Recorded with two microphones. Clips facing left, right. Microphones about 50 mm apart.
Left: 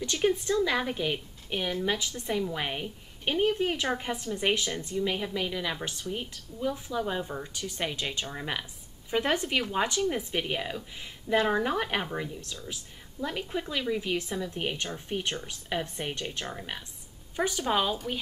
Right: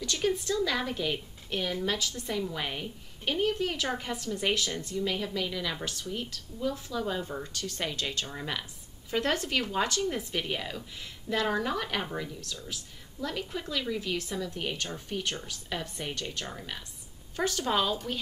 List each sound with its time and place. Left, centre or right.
0.0 s speech: left